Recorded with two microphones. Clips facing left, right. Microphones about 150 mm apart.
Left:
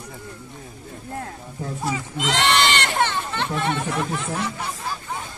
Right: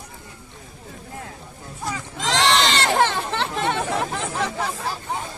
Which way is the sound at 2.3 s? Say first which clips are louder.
Right 1 dB; 90° right.